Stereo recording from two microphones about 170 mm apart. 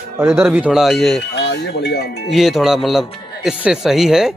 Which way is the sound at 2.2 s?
Centre (ahead or behind).